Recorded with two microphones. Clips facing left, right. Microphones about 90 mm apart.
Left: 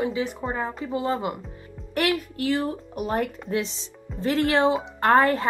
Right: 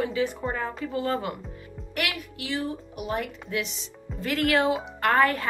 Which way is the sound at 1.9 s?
35° left (ahead or behind).